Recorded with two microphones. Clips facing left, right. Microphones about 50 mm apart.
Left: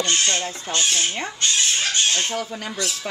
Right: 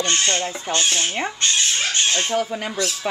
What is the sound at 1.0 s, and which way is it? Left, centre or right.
Speech, centre.